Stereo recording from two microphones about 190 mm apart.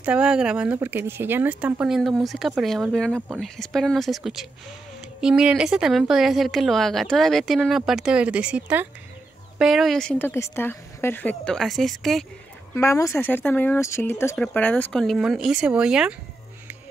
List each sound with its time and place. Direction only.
0.0 s a woman's voice: 5° right (ahead or behind)
12.7 s a woman's voice: 15° left (ahead or behind); by 16.2 s 5° right (ahead or behind)